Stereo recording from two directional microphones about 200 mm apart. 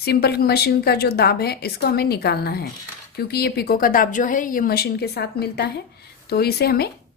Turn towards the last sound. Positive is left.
turn(degrees=55)  # may be behind; listen again after turning